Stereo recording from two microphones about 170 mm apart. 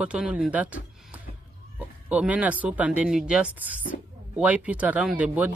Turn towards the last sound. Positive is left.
turn(degrees=-10)  # may be behind; listen again after turning